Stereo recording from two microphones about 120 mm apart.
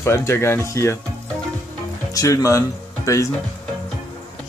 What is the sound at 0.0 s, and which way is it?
Speech, 25° left (ahead or behind).